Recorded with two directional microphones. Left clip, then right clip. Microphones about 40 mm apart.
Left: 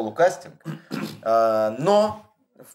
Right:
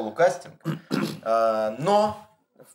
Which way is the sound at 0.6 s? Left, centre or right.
Right.